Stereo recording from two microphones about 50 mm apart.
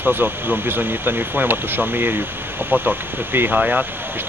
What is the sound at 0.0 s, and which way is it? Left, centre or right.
Speech, right.